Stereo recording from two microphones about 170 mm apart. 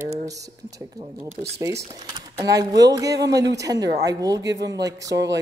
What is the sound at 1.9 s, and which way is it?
Speech, 25° right (ahead or behind).